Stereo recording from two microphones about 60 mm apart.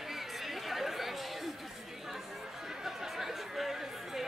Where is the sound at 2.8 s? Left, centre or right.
Centre.